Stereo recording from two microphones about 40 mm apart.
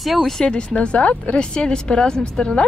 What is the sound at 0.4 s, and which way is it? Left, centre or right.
Speech, centre.